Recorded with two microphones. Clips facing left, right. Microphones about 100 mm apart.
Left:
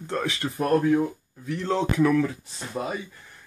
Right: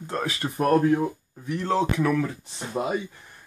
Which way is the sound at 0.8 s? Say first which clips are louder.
Even; 30° right (ahead or behind).